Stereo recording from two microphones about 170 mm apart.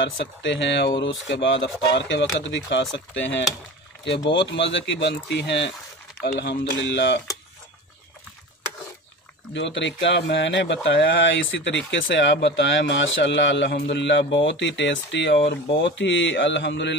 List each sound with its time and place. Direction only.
0.0 s speech: 90° left
6.7 s speech: 90° left
9.5 s speech: 90° left